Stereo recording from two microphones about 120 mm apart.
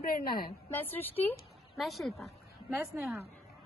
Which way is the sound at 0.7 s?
15° left (ahead or behind).